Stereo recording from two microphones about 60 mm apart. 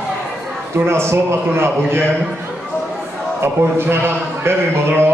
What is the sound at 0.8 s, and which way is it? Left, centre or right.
A man's voice, right.